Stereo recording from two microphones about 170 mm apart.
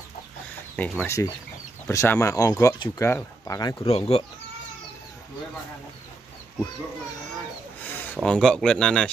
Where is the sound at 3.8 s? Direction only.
35° left (ahead or behind).